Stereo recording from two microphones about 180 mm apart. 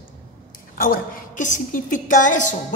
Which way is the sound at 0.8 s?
45° left (ahead or behind).